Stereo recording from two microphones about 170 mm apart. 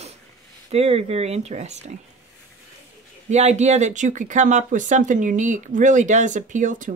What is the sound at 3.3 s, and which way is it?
Speech, 40° right (ahead or behind).